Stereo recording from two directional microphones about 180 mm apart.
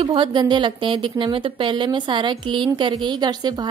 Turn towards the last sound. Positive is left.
turn(degrees=-25)  # may be behind; listen again after turning